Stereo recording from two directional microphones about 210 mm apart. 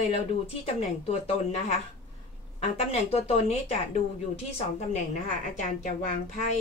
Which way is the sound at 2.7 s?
30° left (ahead or behind).